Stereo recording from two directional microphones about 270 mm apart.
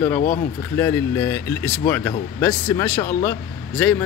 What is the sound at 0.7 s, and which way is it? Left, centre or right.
Speech, centre.